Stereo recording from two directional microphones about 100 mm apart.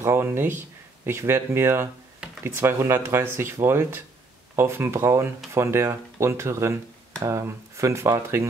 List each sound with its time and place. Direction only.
0.0 s speech: 25° right (ahead or behind)